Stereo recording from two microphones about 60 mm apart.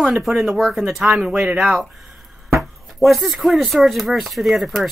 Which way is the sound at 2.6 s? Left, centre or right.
Centre.